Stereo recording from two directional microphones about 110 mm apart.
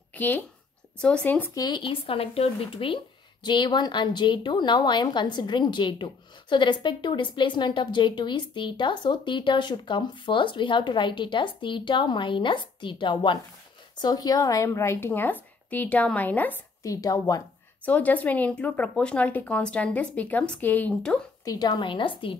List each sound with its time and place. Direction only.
0.1 s a sound: 15° left (ahead or behind)
1.0 s speech: 10° left (ahead or behind)
1.5 s speech: 40° left (ahead or behind)
14.0 s a woman's voice: 35° left (ahead or behind); by 16.6 s 15° left (ahead or behind)
16.8 s a woman's voice: 30° left (ahead or behind)
17.8 s speech: 15° left (ahead or behind)
21.5 s speech: 40° left (ahead or behind)